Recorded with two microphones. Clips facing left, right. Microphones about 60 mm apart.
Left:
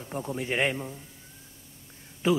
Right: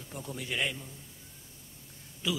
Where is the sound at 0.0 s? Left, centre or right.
Left.